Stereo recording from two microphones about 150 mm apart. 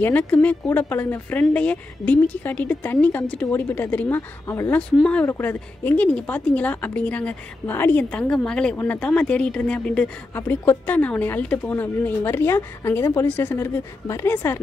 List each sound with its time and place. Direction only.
0.0 s speech: 10° left (ahead or behind)
4.9 s speech: 5° left (ahead or behind)